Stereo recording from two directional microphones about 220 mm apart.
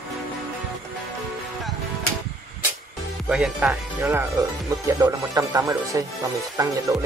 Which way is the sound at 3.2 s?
5° right (ahead or behind).